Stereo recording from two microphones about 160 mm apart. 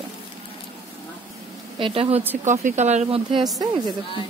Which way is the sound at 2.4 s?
50° right (ahead or behind).